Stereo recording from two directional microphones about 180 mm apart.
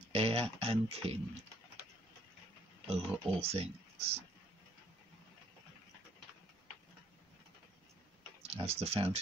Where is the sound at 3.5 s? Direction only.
35° right (ahead or behind).